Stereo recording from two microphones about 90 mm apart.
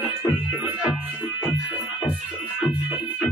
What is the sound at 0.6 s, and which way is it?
Music, 15° right (ahead or behind).